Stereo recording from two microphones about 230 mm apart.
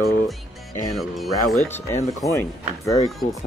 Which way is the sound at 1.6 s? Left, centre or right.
Centre.